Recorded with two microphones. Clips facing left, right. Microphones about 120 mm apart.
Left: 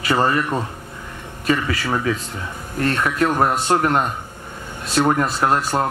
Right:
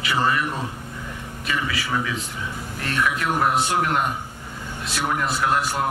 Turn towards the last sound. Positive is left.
turn(degrees=45)  # may be behind; listen again after turning